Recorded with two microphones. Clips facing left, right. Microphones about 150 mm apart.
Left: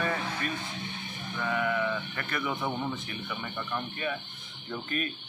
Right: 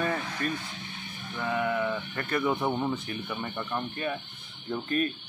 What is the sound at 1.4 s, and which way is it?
Speech, 20° right (ahead or behind).